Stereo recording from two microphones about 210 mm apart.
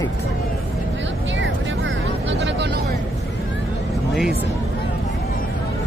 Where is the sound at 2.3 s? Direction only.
55° right (ahead or behind).